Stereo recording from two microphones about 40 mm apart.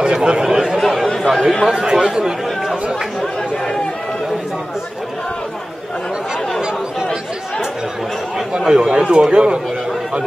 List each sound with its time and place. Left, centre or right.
0.0 s chatter: right
0.7 s chatter: centre
1.7 s speech: centre
8.5 s speech: centre